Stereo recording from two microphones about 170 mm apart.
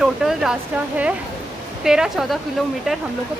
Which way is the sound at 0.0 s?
5° right (ahead or behind).